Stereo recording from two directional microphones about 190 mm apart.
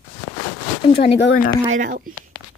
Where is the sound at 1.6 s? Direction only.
45° right (ahead or behind).